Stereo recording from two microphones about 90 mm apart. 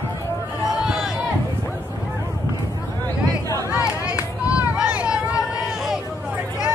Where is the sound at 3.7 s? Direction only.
35° left (ahead or behind).